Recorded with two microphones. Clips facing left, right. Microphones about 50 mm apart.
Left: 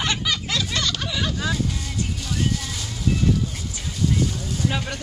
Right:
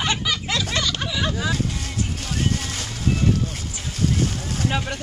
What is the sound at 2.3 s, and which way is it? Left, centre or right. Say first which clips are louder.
Vehicle: right 1 dB; right.